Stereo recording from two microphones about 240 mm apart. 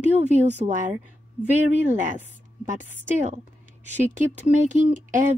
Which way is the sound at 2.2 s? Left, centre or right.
Right.